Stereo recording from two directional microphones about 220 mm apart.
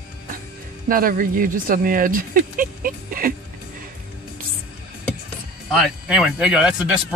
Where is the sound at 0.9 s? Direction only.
40° right (ahead or behind).